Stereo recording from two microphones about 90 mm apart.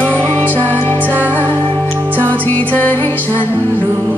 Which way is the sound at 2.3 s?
20° left (ahead or behind).